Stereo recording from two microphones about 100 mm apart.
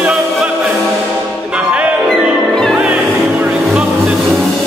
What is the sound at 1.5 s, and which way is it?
Music, 15° right (ahead or behind).